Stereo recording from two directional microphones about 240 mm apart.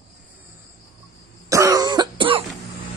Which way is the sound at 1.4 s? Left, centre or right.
Centre.